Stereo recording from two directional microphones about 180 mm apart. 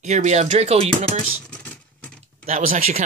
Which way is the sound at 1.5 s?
5° left (ahead or behind).